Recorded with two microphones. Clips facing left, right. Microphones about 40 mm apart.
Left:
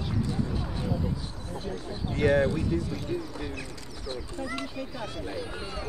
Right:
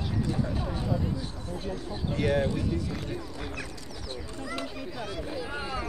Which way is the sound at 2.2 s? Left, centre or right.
Left.